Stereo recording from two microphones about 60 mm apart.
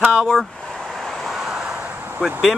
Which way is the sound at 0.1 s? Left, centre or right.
Centre.